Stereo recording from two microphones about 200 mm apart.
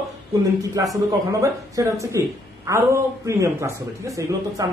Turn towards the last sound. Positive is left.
turn(degrees=-15)  # may be behind; listen again after turning